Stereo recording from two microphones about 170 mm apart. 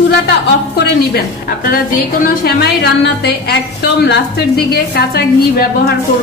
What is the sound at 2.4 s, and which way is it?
A woman's voice, 70° left (ahead or behind).